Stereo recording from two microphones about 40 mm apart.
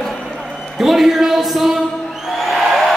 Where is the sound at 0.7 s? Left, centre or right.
Centre.